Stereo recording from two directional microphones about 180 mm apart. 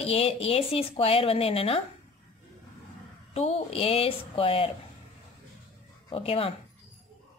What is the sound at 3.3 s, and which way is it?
Speech, 35° left (ahead or behind).